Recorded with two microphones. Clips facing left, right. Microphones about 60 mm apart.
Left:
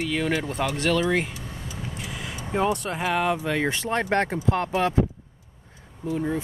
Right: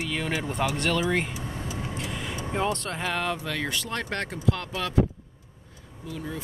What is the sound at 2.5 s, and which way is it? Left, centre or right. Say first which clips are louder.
Speech: left 4 dB; centre.